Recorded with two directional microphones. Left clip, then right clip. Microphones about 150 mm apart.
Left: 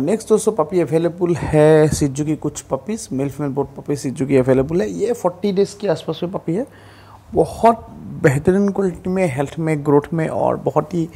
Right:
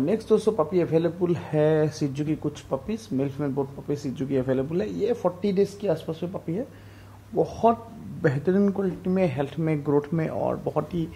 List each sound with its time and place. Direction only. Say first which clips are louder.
0.0 s speech: left 6 dB; 30° left (ahead or behind)
5.6 s speech: left 6 dB; 15° left (ahead or behind)
6.3 s speech: left 9 dB; 30° left (ahead or behind)